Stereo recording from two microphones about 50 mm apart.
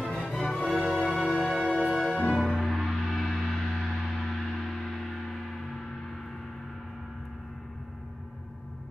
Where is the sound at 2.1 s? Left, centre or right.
Centre.